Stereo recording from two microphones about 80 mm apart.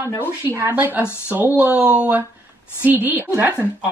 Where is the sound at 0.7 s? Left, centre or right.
Right.